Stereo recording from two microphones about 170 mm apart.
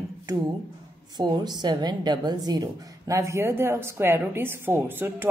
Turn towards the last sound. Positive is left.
turn(degrees=-10)  # may be behind; listen again after turning